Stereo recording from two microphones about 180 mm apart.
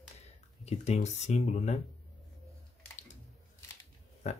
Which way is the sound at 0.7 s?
40° left (ahead or behind).